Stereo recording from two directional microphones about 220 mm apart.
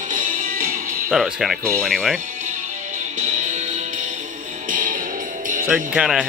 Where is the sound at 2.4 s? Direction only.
35° right (ahead or behind).